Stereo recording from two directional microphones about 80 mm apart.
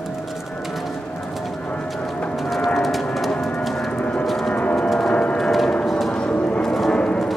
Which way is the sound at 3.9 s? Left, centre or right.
Centre.